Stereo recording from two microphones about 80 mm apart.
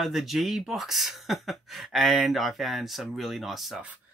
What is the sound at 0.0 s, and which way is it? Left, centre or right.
Speech, centre.